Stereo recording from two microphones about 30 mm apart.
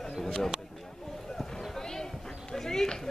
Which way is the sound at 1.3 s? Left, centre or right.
Centre.